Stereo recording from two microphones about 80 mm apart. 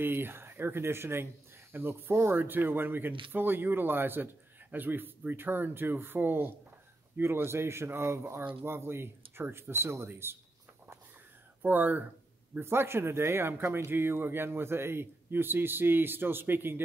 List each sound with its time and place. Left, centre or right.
0.0 s speech: right
11.6 s speech: right